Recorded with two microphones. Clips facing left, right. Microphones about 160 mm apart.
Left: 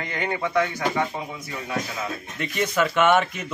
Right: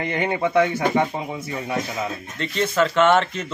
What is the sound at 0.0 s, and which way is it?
Speech, 25° right (ahead or behind).